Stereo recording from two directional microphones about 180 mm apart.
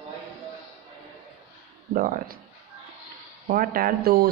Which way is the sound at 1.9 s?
40° right (ahead or behind).